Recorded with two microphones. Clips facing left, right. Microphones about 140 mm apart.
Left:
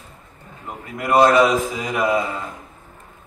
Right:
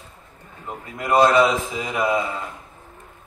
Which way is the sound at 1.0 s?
10° left (ahead or behind).